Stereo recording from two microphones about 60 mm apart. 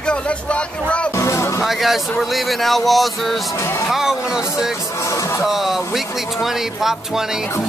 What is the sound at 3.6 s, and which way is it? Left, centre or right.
Speech, left.